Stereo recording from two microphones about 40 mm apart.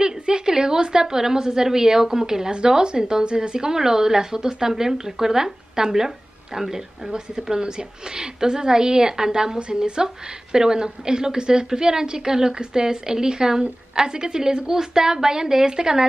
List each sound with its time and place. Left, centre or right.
0.0 s a woman's voice: centre